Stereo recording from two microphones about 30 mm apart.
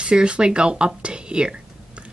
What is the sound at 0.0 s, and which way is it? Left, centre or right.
Speech, right.